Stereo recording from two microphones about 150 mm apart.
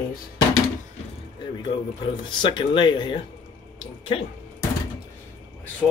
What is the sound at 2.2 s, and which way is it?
Speech, 30° left (ahead or behind).